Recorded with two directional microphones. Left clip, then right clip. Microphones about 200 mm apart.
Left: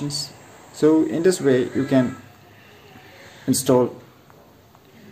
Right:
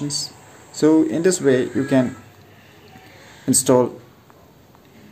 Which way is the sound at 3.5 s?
15° right (ahead or behind).